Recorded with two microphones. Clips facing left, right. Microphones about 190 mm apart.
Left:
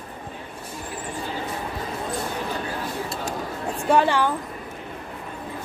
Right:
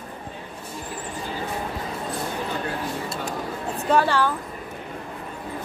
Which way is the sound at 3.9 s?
15° left (ahead or behind).